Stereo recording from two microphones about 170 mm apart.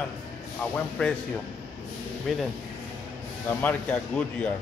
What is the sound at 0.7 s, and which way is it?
Speech, 5° left (ahead or behind).